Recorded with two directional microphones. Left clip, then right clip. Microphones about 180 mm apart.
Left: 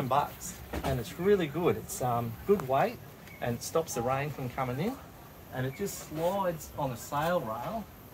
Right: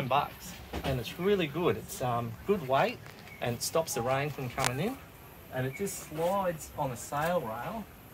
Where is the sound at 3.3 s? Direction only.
45° right (ahead or behind).